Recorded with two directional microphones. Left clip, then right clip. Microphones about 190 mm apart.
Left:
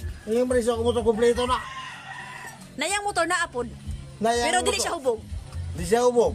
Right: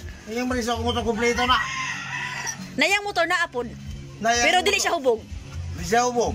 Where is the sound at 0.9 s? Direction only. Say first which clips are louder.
Left 1 dB; 30° left (ahead or behind).